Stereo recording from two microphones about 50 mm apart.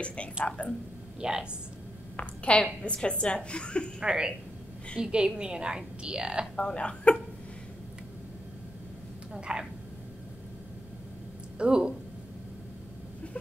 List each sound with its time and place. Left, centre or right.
0.0 s a woman's voice: left
1.2 s a woman's voice: centre
2.1 s a woman's voice: left
4.0 s a woman's voice: centre
6.5 s a woman's voice: centre
9.3 s a woman's voice: centre
11.5 s speech: centre